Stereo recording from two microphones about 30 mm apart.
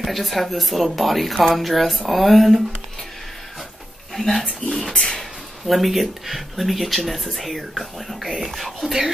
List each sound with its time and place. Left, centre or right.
0.0 s speech: centre
4.1 s speech: centre
4.7 s speech: left
5.7 s speech: centre